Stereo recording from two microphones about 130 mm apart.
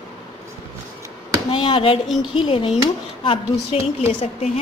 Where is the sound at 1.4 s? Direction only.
40° left (ahead or behind).